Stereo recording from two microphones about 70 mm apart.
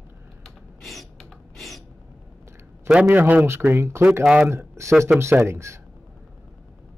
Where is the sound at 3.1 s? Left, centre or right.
Right.